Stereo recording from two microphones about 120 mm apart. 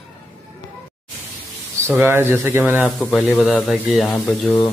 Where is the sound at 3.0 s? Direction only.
Centre (ahead or behind).